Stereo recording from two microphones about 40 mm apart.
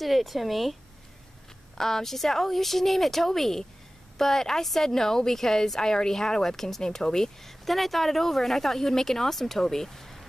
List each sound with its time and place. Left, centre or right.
0.0 s speech: centre
1.8 s a woman's voice: centre
7.6 s a woman's voice: centre